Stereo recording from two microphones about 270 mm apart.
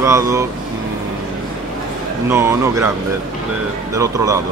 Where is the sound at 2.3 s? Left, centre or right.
Centre.